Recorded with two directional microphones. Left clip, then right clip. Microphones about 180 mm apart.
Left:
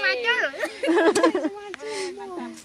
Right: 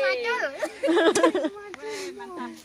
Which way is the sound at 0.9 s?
35° left (ahead or behind).